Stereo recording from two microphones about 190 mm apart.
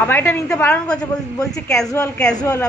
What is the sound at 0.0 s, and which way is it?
Speech, 10° left (ahead or behind).